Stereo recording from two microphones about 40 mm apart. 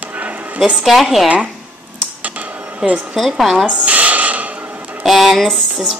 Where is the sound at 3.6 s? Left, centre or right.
Right.